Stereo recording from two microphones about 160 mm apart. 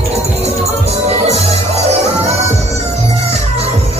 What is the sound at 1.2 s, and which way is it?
Music, 40° right (ahead or behind).